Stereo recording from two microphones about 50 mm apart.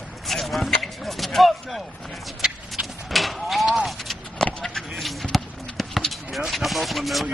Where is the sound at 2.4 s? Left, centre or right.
Centre.